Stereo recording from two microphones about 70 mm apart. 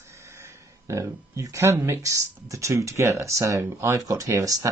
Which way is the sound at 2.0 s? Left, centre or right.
Right.